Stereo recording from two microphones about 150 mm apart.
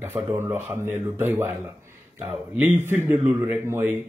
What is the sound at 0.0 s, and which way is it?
Speech, 15° right (ahead or behind).